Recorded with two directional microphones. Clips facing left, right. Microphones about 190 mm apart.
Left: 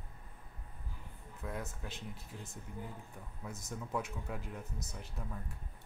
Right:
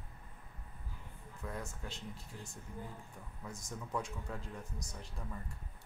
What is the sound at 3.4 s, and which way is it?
Speech, 5° left (ahead or behind).